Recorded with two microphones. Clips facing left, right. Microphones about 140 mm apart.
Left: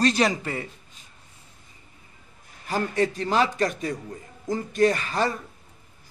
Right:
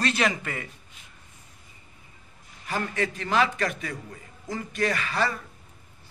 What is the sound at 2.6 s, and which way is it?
A man's voice, 35° left (ahead or behind).